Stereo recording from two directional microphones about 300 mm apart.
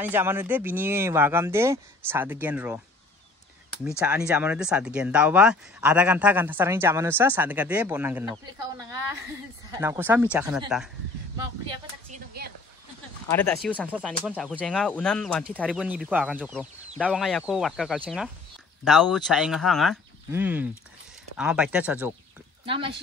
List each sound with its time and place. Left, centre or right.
0.0 s speech: centre
4.3 s speech: centre
9.7 s speech: centre
11.3 s speech: centre
13.3 s speech: centre
22.7 s speech: centre